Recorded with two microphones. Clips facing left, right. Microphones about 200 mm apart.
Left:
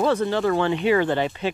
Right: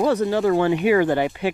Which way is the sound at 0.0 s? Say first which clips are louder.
Right 2 dB; 40° right (ahead or behind).